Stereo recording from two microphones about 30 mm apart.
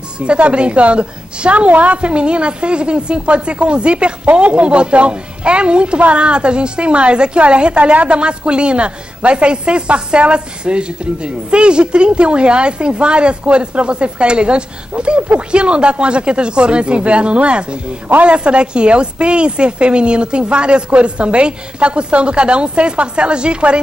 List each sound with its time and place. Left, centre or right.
0.2 s a woman's voice: right
1.7 s a woman's voice: right
2.0 s a woman's voice: right
8.2 s a woman's voice: right